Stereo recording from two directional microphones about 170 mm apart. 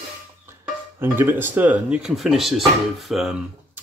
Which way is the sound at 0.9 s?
15° right (ahead or behind).